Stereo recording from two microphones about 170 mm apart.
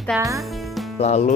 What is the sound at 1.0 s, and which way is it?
Speech, 40° left (ahead or behind).